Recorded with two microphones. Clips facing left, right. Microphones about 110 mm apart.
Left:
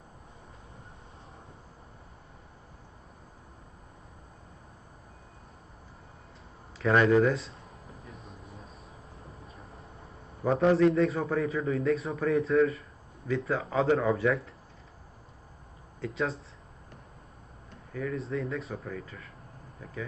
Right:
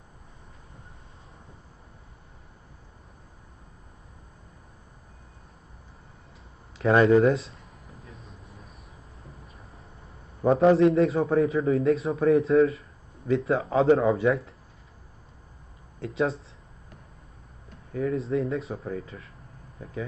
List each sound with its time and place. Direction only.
6.8 s speech: 30° right (ahead or behind)
8.0 s vehicle: centre (ahead or behind)
10.4 s a man's voice: 30° right (ahead or behind)
16.0 s a man's voice: 30° right (ahead or behind)
17.9 s a man's voice: 30° right (ahead or behind)